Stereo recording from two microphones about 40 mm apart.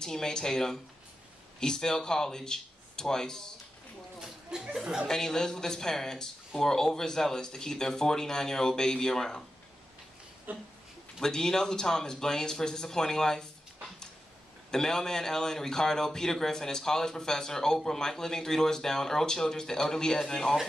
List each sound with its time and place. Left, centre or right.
0.0 s a man's voice: centre
4.2 s speech: centre
5.0 s a man's voice: centre
10.5 s speech: right
11.1 s a man's voice: centre
14.7 s a man's voice: centre